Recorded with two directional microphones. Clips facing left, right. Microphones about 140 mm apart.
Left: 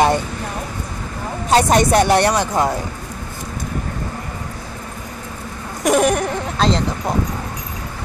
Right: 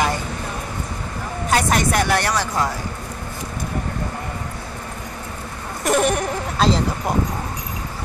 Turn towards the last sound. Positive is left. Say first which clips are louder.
# left 1 dB
turn(degrees=-5)  # may be behind; listen again after turning